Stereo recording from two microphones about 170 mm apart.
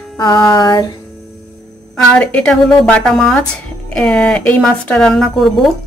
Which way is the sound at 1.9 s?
5° left (ahead or behind).